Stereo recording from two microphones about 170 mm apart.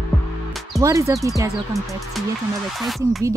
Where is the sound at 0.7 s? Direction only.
20° right (ahead or behind).